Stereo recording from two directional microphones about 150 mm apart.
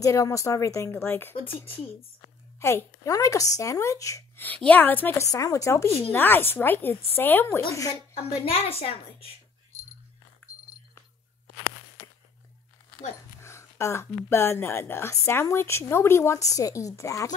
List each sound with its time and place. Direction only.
0.0 s speech: 20° left (ahead or behind)
2.6 s speech: 20° left (ahead or behind)
5.9 s a child's voice: 40° left (ahead or behind)
6.1 s speech: 15° left (ahead or behind)
8.5 s a child's voice: 40° left (ahead or behind)
13.4 s speech: 20° left (ahead or behind)